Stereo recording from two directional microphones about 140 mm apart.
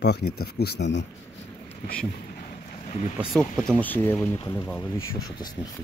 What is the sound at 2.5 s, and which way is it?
Vehicle, 55° left (ahead or behind).